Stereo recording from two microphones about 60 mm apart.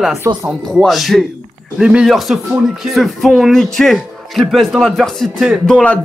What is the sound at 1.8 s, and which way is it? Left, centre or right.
Speech, centre.